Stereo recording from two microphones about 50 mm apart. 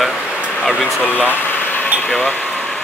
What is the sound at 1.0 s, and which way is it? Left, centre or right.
Speech, left.